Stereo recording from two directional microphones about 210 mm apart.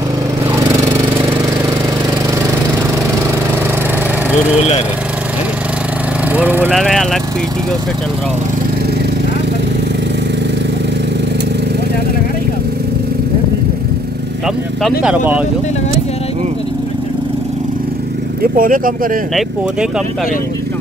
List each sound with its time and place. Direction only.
6.3 s speech: 10° right (ahead or behind)
6.8 s speech: centre (ahead or behind)
14.8 s speech: 5° right (ahead or behind)
18.4 s speech: 40° right (ahead or behind)